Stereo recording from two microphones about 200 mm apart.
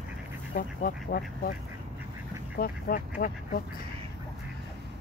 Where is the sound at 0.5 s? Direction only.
45° left (ahead or behind).